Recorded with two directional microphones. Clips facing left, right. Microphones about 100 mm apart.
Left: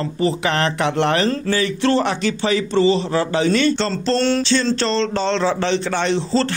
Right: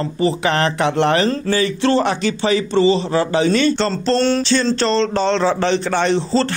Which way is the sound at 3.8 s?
45° right (ahead or behind).